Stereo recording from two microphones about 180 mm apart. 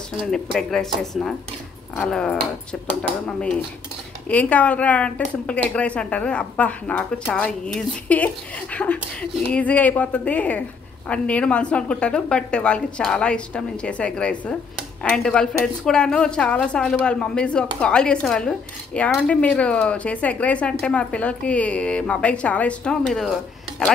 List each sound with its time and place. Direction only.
0.2 s a woman's voice: centre (ahead or behind)